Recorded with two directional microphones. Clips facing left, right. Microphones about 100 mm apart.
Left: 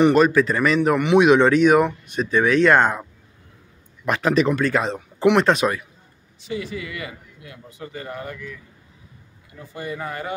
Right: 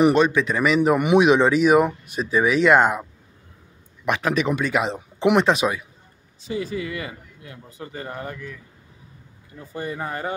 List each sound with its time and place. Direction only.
0.0 s speech: centre (ahead or behind)
6.4 s a man's voice: 35° right (ahead or behind)
9.8 s a man's voice: 30° right (ahead or behind)